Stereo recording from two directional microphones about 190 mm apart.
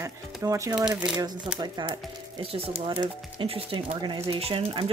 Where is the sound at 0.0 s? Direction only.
15° right (ahead or behind).